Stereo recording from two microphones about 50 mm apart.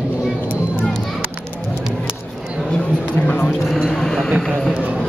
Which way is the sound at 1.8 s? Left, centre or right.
Centre.